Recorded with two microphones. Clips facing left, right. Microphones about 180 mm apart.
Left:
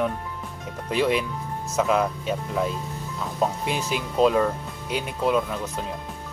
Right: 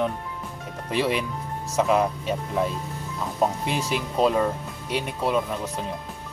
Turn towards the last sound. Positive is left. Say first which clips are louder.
# left 1 dB
turn(degrees=0)  # may be behind; listen again after turning